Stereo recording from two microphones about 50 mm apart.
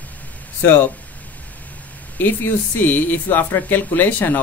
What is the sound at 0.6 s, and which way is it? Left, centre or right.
Speech, left.